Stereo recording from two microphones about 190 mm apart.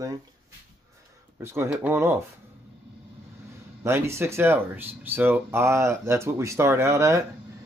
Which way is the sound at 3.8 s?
15° right (ahead or behind).